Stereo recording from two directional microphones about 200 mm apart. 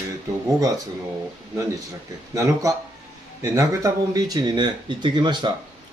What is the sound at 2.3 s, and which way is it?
A man's voice, 15° right (ahead or behind).